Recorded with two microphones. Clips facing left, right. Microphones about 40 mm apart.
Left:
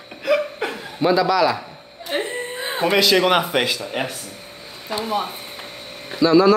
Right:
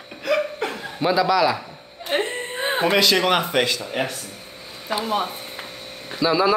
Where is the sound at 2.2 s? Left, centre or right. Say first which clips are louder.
Right 1 dB; right.